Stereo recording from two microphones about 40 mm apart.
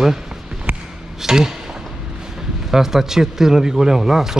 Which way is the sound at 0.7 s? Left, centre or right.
Right.